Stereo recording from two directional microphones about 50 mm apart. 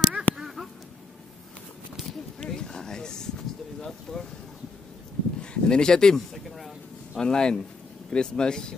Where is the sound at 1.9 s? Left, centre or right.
Centre.